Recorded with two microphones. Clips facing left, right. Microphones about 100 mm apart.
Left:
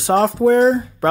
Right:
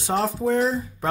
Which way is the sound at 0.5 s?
45° left (ahead or behind).